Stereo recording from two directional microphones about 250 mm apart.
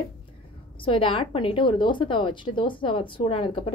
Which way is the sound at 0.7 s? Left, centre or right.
Left.